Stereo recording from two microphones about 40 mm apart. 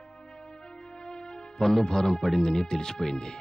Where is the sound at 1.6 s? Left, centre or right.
Centre.